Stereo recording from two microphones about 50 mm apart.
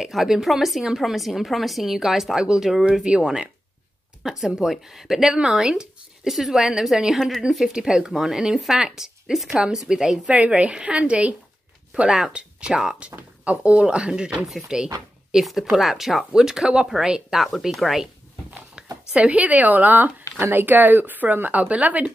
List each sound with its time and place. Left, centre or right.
0.0 s a woman's voice: centre
10.3 s speech: right
11.9 s speech: centre
15.7 s a woman's voice: centre
18.8 s a woman's voice: right